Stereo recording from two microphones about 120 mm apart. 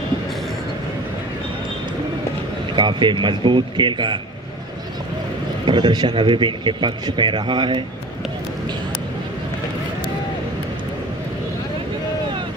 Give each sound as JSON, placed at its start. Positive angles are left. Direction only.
{"t": 2.7, "sound": "a man's voice", "side_deg": -40}
{"t": 5.7, "sound": "a man's voice", "side_deg": -40}